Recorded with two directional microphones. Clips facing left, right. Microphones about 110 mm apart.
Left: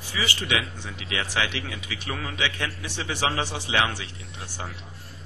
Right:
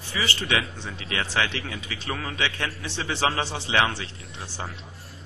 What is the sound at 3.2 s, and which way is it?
Speech, 30° right (ahead or behind).